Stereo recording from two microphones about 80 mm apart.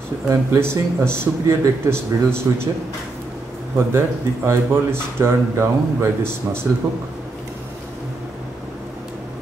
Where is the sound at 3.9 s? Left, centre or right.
Right.